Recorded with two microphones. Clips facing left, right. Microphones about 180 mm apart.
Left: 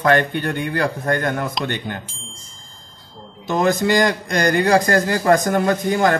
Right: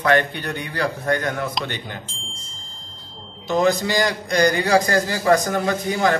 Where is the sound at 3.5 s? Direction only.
50° left (ahead or behind).